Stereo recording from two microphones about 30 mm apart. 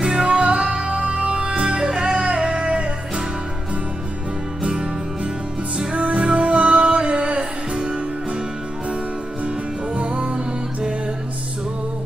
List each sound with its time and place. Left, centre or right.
0.0 s music: right
1.0 s music: right
1.9 s music: centre
2.2 s a sound: right
5.9 s music: right
6.2 s music: right
9.9 s music: right